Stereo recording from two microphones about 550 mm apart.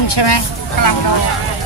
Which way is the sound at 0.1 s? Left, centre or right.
Left.